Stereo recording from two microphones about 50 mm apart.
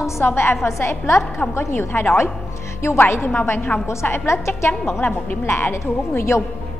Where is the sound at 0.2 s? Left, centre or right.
Left.